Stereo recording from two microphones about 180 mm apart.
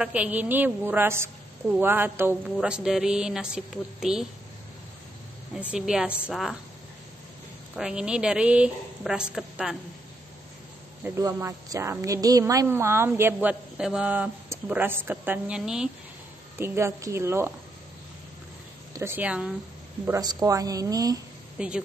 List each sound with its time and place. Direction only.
0.0 s a woman's voice: 10° right (ahead or behind)
5.5 s a woman's voice: 5° right (ahead or behind)
7.7 s a woman's voice: 5° right (ahead or behind)
11.1 s a woman's voice: 15° right (ahead or behind)
18.9 s a woman's voice: 10° right (ahead or behind)
20.1 s a woman's voice: 20° right (ahead or behind)
21.5 s a woman's voice: 5° right (ahead or behind)